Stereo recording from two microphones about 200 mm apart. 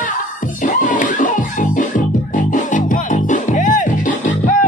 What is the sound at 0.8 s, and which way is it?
Music, 40° left (ahead or behind).